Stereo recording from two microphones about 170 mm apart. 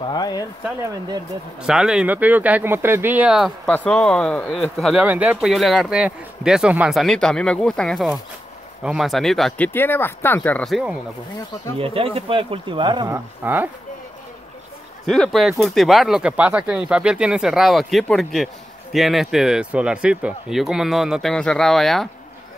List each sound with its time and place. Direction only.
0.0 s speech: 25° left (ahead or behind)
1.6 s speech: 5° right (ahead or behind)
9.7 s speech: 10° left (ahead or behind)
11.8 s speech: 35° right (ahead or behind)
13.1 s speech: 10° right (ahead or behind)
15.0 s speech: centre (ahead or behind)